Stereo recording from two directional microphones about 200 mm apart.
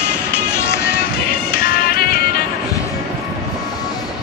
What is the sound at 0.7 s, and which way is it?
Music, 55° left (ahead or behind).